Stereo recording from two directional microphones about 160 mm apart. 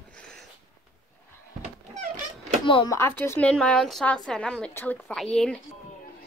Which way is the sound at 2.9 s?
15° left (ahead or behind).